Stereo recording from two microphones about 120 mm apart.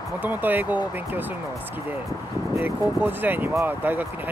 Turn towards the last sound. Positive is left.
turn(degrees=-15)  # may be behind; listen again after turning